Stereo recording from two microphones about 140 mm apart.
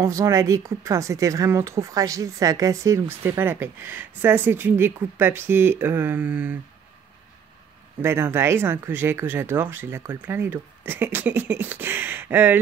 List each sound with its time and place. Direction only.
0.0 s a woman's voice: 20° right (ahead or behind)
8.0 s a woman's voice: 15° right (ahead or behind)